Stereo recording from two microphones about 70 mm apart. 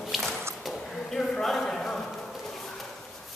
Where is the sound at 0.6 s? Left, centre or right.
Centre.